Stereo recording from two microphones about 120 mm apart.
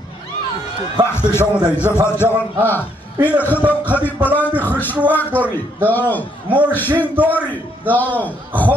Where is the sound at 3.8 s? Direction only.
15° left (ahead or behind).